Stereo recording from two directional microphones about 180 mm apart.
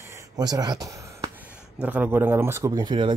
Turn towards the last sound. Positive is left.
turn(degrees=-25)  # may be behind; listen again after turning